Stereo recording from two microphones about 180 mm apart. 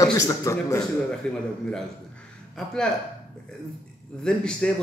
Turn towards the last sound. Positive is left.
turn(degrees=5)  # may be behind; listen again after turning